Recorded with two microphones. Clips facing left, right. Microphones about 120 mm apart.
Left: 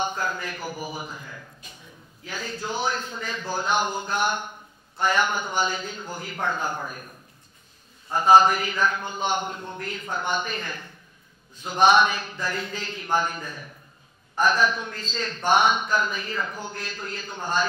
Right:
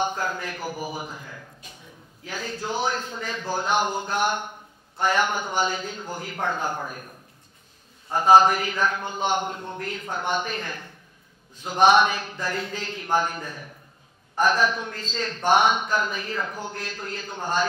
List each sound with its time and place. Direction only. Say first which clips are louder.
0.1 s a sound: even; 40° right (ahead or behind)
1.0 s a man's voice: right 1 dB; 35° right (ahead or behind)
2.2 s a man's voice: right 1 dB; 50° right (ahead or behind)
8.1 s a man's voice: even; 50° right (ahead or behind)
14.4 s a man's voice: even; 55° right (ahead or behind)